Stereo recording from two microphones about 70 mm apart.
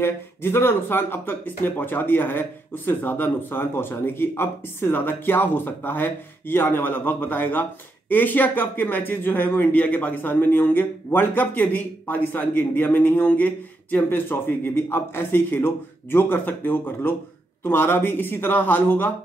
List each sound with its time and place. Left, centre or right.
0.0 s speech: left